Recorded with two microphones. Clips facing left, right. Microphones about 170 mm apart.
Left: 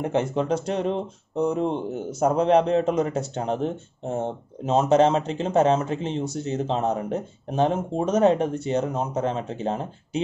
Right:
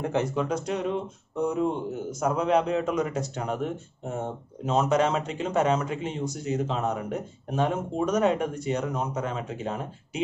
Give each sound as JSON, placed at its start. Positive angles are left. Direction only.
{"t": 0.0, "sound": "a man's voice", "side_deg": 25}